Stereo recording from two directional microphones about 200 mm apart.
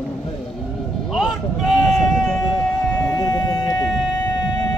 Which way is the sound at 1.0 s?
Centre (ahead or behind).